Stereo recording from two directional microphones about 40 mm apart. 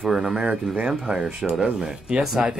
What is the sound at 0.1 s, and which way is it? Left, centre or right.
Speech, right.